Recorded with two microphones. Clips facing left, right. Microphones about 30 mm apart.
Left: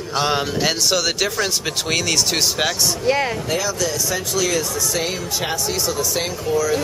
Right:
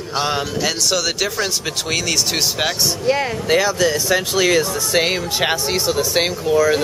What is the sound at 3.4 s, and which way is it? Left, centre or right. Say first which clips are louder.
Speech: right 6 dB; right.